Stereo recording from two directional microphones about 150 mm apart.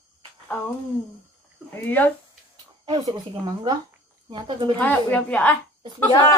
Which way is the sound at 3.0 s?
30° right (ahead or behind).